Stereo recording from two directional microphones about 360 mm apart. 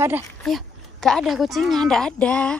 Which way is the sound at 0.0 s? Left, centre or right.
Centre.